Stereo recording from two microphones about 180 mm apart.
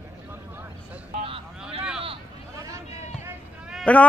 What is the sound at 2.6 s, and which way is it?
Vehicle, 15° right (ahead or behind).